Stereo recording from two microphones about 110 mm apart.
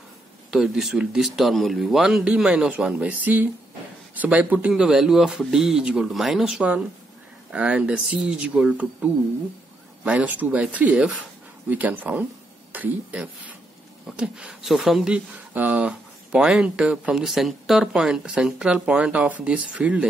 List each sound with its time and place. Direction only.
0.5 s speech: 5° right (ahead or behind)